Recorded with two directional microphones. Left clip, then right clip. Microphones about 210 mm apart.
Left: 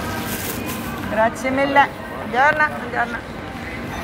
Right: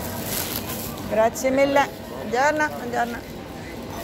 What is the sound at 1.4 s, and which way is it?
Speech, 80° right.